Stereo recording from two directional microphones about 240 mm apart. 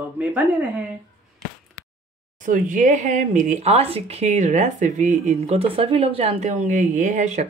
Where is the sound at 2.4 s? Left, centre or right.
Right.